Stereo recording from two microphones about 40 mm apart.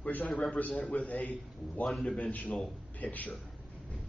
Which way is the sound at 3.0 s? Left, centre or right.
Left.